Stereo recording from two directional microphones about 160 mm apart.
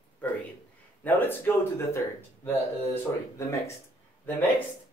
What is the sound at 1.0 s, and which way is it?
Speech, 10° left (ahead or behind).